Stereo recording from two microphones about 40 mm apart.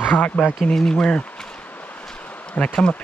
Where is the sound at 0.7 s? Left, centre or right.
Centre.